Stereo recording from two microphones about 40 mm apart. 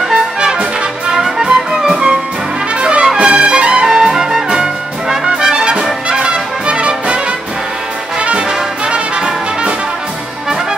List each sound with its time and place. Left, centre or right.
0.1 s brass instrument: centre
1.2 s music: centre
2.8 s trumpet: right
3.2 s music: right
3.8 s trumpet: centre
5.2 s music: right
8.2 s brass instrument: right